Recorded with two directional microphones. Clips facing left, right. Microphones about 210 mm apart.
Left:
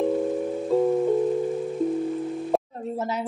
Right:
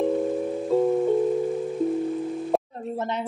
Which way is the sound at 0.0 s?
Centre (ahead or behind).